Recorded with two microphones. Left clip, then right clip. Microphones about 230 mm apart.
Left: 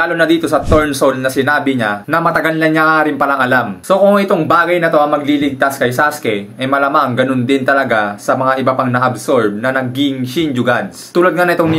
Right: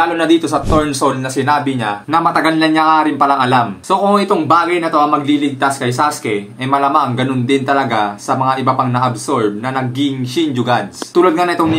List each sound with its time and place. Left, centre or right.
0.0 s speech: centre